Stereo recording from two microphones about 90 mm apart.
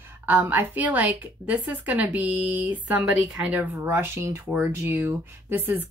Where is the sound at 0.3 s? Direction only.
20° right (ahead or behind).